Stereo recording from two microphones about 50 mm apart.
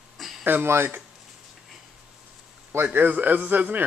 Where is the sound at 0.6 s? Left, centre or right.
Right.